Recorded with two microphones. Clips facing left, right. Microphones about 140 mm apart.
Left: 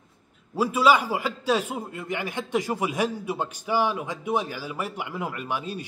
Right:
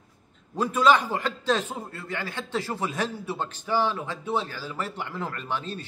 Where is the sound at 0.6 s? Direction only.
10° left (ahead or behind).